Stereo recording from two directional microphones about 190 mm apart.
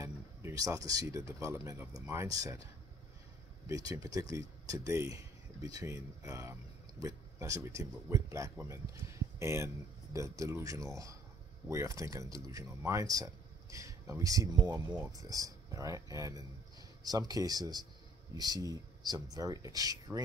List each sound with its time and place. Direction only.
0.0 s a sound: 15° right (ahead or behind)
1.4 s speech: 15° right (ahead or behind)
3.6 s speech: 15° right (ahead or behind)